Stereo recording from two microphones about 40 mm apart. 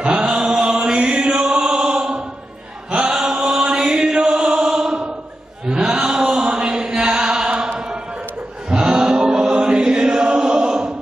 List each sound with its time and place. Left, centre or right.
0.0 s chant: right
0.9 s music: right
3.1 s chant: centre